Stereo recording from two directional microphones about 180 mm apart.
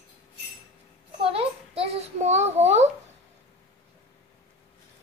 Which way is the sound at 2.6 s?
40° right (ahead or behind).